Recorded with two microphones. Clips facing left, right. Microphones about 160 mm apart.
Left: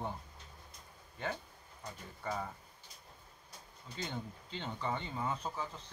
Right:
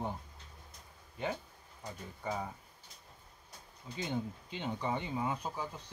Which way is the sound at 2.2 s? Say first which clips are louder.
Right 1 dB; 10° right (ahead or behind).